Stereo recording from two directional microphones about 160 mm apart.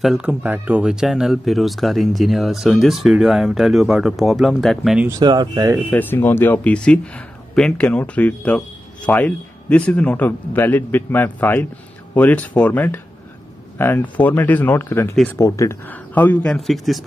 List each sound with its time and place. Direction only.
0.0 s speech: 5° right (ahead or behind)
5.2 s speech: 25° right (ahead or behind)
5.9 s speech: 10° left (ahead or behind)